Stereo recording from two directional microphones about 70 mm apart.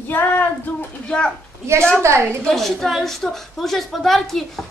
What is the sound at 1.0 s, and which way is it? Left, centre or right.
Speech, centre.